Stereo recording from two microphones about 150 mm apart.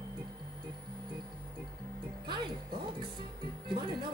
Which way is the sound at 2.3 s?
30° right (ahead or behind).